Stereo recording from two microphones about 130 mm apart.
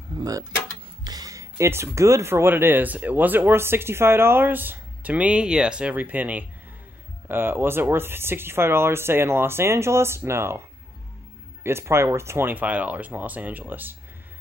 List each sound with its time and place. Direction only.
0.1 s speech: 25° right (ahead or behind)
11.6 s speech: 20° right (ahead or behind)